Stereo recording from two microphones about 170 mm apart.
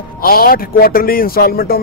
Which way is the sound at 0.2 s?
60° left (ahead or behind).